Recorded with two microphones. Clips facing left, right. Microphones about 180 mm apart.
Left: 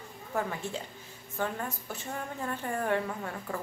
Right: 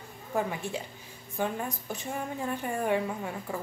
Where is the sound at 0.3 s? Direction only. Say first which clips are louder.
Right 2 dB; 15° right (ahead or behind).